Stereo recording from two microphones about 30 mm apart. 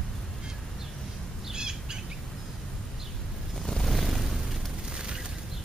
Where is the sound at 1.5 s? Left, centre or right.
Right.